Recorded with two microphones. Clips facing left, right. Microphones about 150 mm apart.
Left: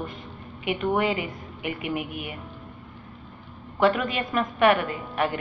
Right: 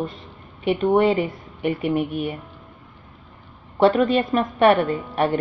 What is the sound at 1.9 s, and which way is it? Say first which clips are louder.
Speech: right 8 dB; centre (ahead or behind).